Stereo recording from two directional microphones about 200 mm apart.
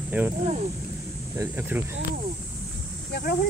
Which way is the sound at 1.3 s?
15° right (ahead or behind).